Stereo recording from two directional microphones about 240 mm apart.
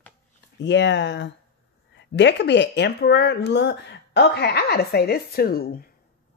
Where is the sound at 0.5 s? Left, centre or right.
Left.